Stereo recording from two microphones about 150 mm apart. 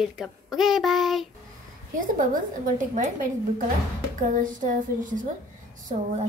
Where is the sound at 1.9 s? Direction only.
65° right (ahead or behind).